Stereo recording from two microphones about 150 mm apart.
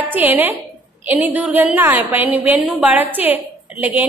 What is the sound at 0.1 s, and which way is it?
A woman's voice, 10° right (ahead or behind).